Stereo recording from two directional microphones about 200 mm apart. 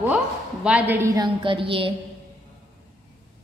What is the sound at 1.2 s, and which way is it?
Speech, 25° right (ahead or behind).